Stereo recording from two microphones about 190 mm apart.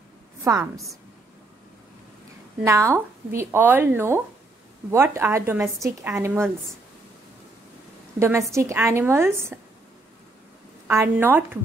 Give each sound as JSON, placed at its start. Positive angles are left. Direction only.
{"t": 0.4, "sound": "a woman's voice", "side_deg": -15}
{"t": 2.6, "sound": "a woman's voice", "side_deg": -15}
{"t": 8.2, "sound": "a woman's voice", "side_deg": -15}
{"t": 10.9, "sound": "a woman's voice", "side_deg": -10}